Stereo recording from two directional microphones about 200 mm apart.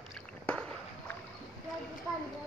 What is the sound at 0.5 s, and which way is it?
Rowboat, 5° left (ahead or behind).